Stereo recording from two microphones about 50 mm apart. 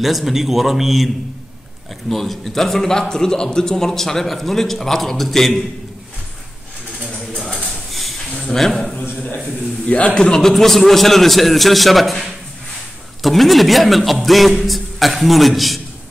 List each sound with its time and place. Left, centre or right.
0.0 s a man's voice: centre
7.1 s a sound: centre
8.5 s a man's voice: centre
9.2 s a man's voice: left
10.2 s a man's voice: centre